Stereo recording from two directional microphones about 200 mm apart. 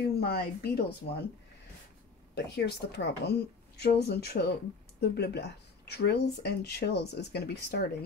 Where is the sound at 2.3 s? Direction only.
55° left (ahead or behind).